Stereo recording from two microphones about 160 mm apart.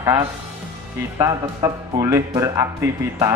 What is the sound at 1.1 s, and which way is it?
Speech, 20° right (ahead or behind).